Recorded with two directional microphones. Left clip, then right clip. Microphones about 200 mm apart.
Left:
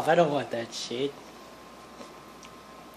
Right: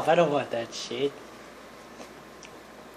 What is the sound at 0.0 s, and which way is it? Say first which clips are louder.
Speech: right 1 dB; 30° left (ahead or behind).